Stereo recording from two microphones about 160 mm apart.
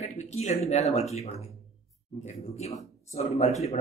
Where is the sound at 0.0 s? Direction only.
40° left (ahead or behind).